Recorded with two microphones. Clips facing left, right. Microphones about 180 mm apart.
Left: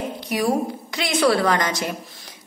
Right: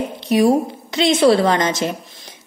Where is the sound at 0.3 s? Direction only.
25° right (ahead or behind).